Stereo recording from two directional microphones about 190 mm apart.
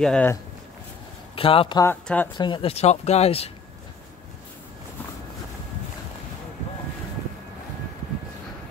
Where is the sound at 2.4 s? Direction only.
25° left (ahead or behind).